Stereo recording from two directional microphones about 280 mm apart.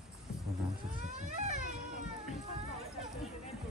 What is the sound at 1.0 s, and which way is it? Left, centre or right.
Vehicle, right.